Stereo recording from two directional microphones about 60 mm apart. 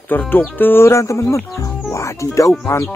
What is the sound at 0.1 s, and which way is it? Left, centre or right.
Speech, left.